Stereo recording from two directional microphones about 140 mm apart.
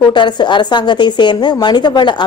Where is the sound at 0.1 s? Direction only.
35° left (ahead or behind).